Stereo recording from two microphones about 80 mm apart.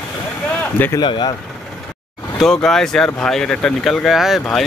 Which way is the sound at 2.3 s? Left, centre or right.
Centre.